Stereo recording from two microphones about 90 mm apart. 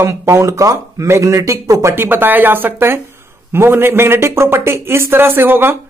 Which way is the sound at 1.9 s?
25° right (ahead or behind).